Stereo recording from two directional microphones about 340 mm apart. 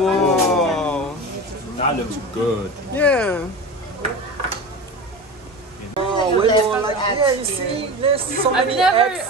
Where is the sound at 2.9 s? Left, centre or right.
Centre.